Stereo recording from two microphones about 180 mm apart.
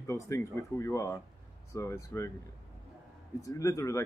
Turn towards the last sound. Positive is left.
turn(degrees=15)  # may be behind; listen again after turning